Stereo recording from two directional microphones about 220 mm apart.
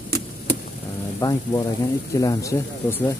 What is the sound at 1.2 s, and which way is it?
Speech, 15° left (ahead or behind).